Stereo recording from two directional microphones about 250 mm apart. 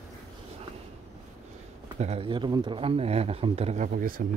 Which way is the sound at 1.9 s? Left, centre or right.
Right.